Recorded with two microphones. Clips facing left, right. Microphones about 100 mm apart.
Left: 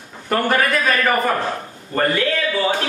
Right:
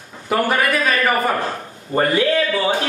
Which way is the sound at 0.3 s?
5° right (ahead or behind).